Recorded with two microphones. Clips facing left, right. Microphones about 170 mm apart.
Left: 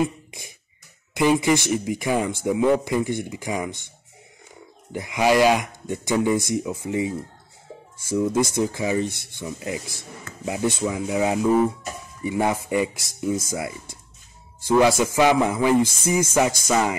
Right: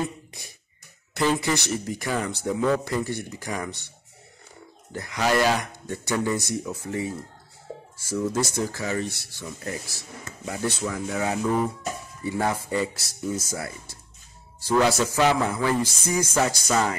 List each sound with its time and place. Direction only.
0.0 s beatboxing: 20° left (ahead or behind)
1.1 s speech: 15° left (ahead or behind)
4.9 s speech: 15° left (ahead or behind)
14.7 s speech: 10° left (ahead or behind)